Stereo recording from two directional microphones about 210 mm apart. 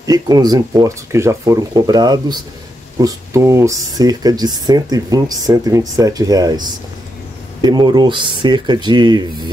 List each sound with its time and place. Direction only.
0.0 s speech: 20° right (ahead or behind)
7.6 s speech: 20° right (ahead or behind)